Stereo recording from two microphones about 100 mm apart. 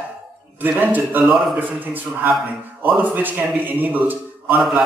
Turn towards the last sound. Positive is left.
turn(degrees=-15)  # may be behind; listen again after turning